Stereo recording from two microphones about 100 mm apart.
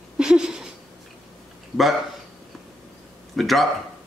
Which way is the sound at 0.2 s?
5° right (ahead or behind).